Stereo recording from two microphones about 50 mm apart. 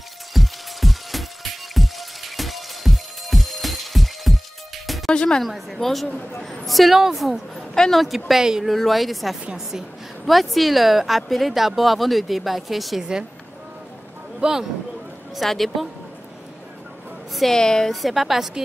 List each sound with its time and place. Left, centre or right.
0.3 s music: centre
5.1 s a woman's voice: centre
5.4 s a woman's voice: centre
6.0 s speech: left
6.4 s a woman's voice: centre
7.7 s speech: centre
8.3 s speech: centre
8.6 s a woman's voice: centre
14.4 s speech: centre
15.3 s a woman's voice: centre
17.3 s a woman's voice: centre
17.6 s a woman's voice: centre
18.0 s a woman's voice: centre